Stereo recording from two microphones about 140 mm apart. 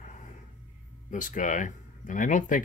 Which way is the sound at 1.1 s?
65° left (ahead or behind).